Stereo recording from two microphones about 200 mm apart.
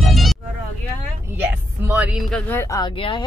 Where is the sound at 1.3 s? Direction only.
10° right (ahead or behind); by 2.9 s 15° left (ahead or behind).